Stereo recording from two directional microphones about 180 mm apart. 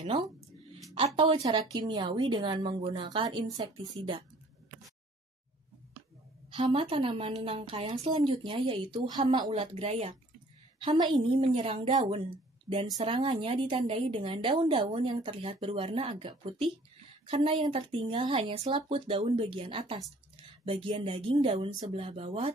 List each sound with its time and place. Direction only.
0.8 s a woman's voice: 30° right (ahead or behind)
6.5 s a woman's voice: 30° right (ahead or behind)